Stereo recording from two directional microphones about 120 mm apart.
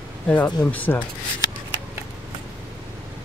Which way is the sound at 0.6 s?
15° left (ahead or behind).